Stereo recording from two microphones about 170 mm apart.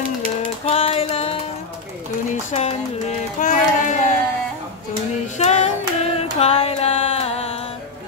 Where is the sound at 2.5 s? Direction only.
40° left (ahead or behind).